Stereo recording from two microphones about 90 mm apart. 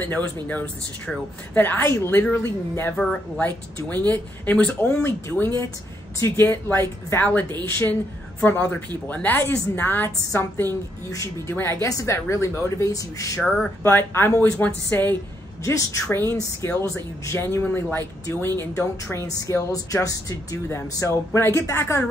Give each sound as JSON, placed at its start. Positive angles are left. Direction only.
{"t": 0.0, "sound": "speech", "side_deg": 20}
{"t": 3.0, "sound": "speech", "side_deg": 10}
{"t": 3.4, "sound": "speech", "side_deg": 20}
{"t": 8.4, "sound": "speech", "side_deg": 15}
{"t": 11.1, "sound": "a woman's voice", "side_deg": 40}
{"t": 11.5, "sound": "a woman's voice", "side_deg": 25}
{"t": 13.8, "sound": "speech", "side_deg": 25}
{"t": 15.6, "sound": "a woman's voice", "side_deg": 35}